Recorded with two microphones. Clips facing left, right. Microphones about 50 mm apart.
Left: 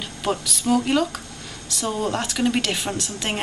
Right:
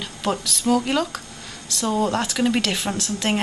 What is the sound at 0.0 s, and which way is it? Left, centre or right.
Speech, centre.